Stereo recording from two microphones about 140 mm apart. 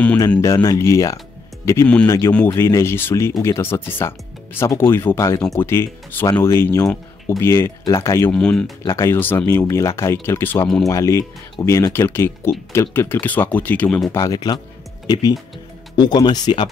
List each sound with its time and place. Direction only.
0.4 s speech: 25° left (ahead or behind)
8.3 s speech: 5° left (ahead or behind)
8.8 s speech: 20° left (ahead or behind)
14.1 s speech: 25° left (ahead or behind)
16.0 s speech: 30° left (ahead or behind)